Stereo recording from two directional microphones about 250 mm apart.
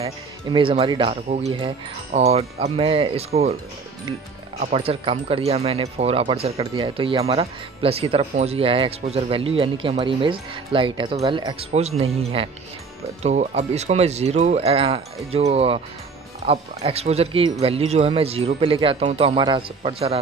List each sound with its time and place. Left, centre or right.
0.0 s speech: right
4.6 s speech: right